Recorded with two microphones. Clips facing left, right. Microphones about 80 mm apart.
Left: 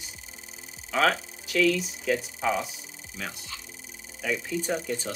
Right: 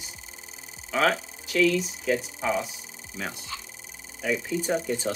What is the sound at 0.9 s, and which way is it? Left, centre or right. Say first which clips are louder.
Speech: even; centre.